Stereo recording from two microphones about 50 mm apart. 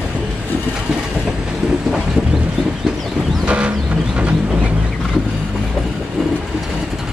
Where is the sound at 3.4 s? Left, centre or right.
Right.